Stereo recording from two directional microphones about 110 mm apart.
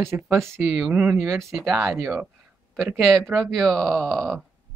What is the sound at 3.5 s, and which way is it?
Speech, centre (ahead or behind).